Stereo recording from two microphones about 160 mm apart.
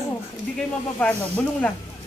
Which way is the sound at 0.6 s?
10° left (ahead or behind).